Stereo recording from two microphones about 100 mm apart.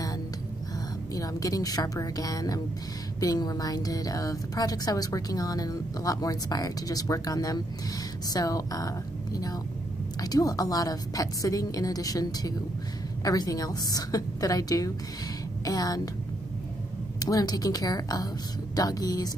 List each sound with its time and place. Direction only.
1.1 s speech: 35° left (ahead or behind)
17.2 s speech: 40° left (ahead or behind)